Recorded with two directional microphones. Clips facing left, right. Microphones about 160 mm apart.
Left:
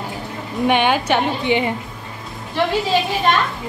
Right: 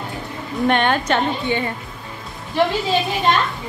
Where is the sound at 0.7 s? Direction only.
5° left (ahead or behind).